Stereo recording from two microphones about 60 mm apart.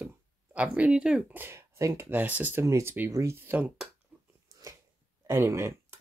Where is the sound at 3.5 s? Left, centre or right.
Right.